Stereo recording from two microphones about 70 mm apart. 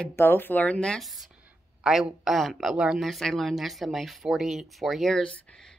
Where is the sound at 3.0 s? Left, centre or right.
Centre.